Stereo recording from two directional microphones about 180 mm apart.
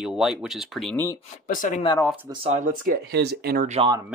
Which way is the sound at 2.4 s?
40° right (ahead or behind).